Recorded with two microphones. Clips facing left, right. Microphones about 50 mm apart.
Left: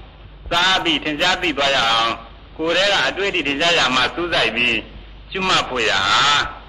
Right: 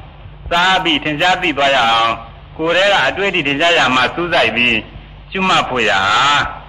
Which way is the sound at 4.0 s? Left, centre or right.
Centre.